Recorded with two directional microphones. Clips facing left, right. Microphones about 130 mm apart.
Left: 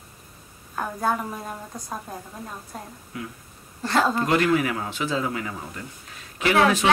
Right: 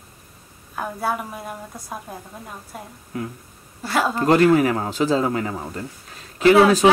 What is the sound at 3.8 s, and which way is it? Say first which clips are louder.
Speech: even; 10° right (ahead or behind).